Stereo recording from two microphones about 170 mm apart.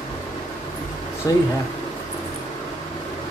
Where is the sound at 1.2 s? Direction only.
20° left (ahead or behind).